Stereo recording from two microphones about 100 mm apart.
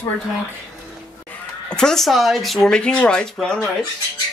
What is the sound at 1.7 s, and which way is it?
Speech, 5° left (ahead or behind).